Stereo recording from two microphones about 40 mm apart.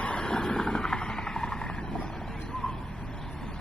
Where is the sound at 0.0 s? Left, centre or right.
Left.